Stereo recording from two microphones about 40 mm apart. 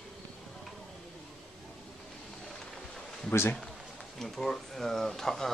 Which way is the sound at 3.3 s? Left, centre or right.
Left.